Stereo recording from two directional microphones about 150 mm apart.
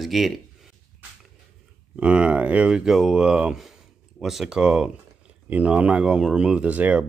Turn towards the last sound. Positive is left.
turn(degrees=-10)  # may be behind; listen again after turning